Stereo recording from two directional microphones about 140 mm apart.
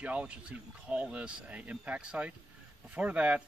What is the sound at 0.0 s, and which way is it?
Speech, 10° right (ahead or behind).